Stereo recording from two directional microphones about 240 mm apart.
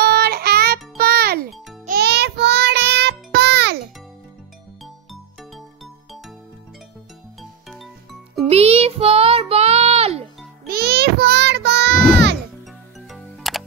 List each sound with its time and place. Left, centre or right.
0.0 s music: right
7.8 s music: centre
8.5 s music: right
10.7 s child singing: right
13.1 s music: centre